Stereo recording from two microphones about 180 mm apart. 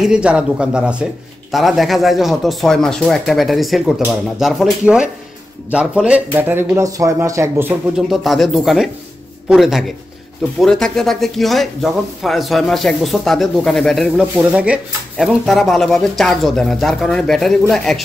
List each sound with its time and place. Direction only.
0.0 s speech: 5° right (ahead or behind)
8.1 s speech: centre (ahead or behind)